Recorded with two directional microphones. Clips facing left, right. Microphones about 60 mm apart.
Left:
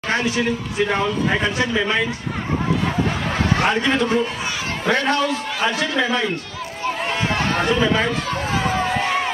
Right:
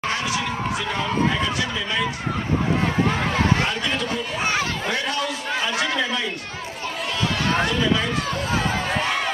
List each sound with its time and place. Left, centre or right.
0.1 s speech: left
3.6 s speech: left
7.6 s speech: left
8.6 s run: left